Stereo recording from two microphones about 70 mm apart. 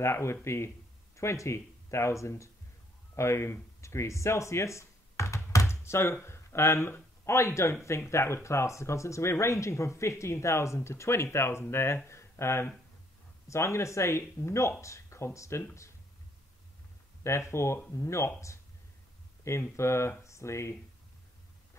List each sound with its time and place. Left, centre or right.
0.0 s speech: left
17.2 s speech: left
19.5 s speech: left